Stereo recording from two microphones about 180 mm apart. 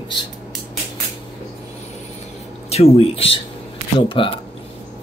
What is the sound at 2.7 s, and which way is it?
Speech, 35° left (ahead or behind).